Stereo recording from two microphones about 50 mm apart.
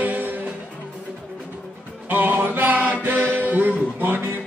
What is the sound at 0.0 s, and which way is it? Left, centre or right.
Music, right.